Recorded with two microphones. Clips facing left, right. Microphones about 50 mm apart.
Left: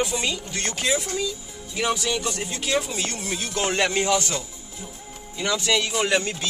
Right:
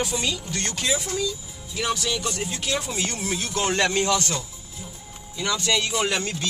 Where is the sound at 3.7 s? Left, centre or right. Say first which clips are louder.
Left 1 dB; centre.